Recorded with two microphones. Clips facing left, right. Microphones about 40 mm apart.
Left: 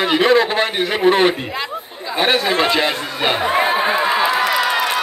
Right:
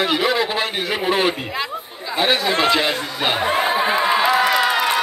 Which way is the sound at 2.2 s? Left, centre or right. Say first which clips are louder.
Left 1 dB; left.